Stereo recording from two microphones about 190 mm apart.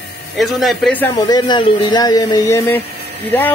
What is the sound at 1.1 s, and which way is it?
A man's voice, 20° left (ahead or behind).